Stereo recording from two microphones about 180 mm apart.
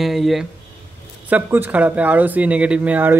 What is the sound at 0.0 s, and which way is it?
A man's voice, centre (ahead or behind).